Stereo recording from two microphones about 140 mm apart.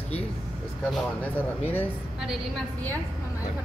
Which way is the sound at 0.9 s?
5° left (ahead or behind).